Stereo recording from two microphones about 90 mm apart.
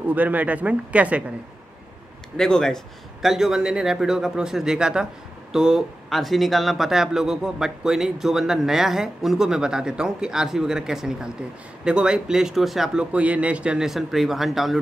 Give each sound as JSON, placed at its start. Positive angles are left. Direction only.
{"t": 0.0, "sound": "speech", "side_deg": -20}
{"t": 2.3, "sound": "speech", "side_deg": 5}